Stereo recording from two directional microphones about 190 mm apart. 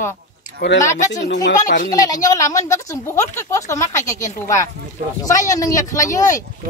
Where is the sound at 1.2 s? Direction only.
65° left (ahead or behind).